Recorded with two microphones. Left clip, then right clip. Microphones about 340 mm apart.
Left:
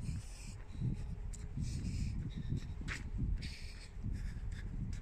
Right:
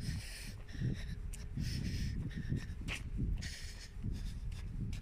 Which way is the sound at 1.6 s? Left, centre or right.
Right.